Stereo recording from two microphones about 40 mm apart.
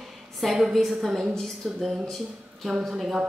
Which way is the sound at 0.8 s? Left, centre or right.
Centre.